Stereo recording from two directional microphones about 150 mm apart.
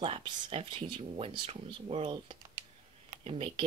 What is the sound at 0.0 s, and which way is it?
Speech, 35° right (ahead or behind).